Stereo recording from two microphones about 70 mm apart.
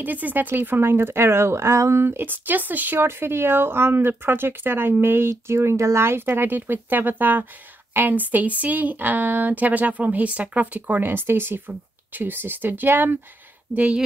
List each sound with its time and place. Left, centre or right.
0.0 s a woman's voice: right
13.7 s speech: centre